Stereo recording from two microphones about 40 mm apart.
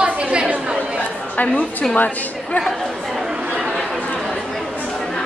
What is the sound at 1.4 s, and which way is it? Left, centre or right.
Speech, left.